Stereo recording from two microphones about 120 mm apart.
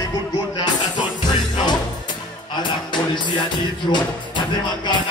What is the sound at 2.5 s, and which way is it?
Music, 40° left (ahead or behind).